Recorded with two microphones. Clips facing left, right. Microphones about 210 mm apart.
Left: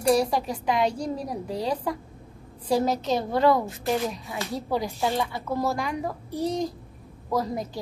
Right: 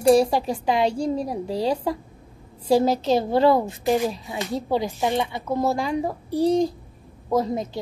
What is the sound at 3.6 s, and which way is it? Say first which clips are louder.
A woman's voice: right 5 dB; 15° right (ahead or behind).